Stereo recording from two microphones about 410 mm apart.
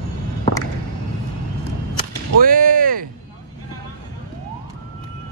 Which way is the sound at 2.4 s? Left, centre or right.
Right.